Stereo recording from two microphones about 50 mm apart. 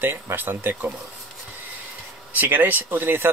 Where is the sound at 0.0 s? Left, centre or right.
Right.